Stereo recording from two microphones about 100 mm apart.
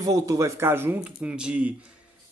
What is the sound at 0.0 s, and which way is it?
A man's voice, 35° right (ahead or behind).